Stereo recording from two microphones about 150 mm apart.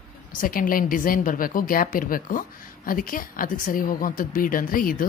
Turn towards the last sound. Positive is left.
turn(degrees=70)  # may be behind; listen again after turning